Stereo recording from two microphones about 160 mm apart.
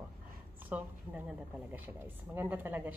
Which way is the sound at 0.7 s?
10° right (ahead or behind).